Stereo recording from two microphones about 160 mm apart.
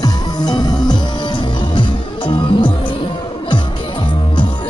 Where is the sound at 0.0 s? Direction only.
25° left (ahead or behind).